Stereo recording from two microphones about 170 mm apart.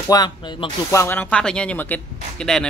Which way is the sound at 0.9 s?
10° left (ahead or behind).